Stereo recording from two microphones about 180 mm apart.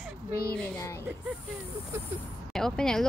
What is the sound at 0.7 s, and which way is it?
Speech, 15° left (ahead or behind).